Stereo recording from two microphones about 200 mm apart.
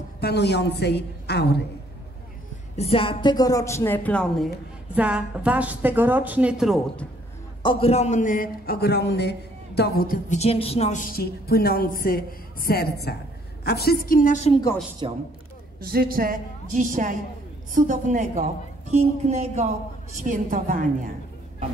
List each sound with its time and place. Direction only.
0.2 s a woman's voice: 55° left (ahead or behind)
2.7 s a woman's voice: 30° left (ahead or behind); by 4.5 s 5° left (ahead or behind)
4.9 s a woman's voice: 5° right (ahead or behind)
7.6 s a man's voice: 25° left (ahead or behind)
15.0 s a man's voice: 25° right (ahead or behind)
15.8 s a woman's voice: 50° right (ahead or behind)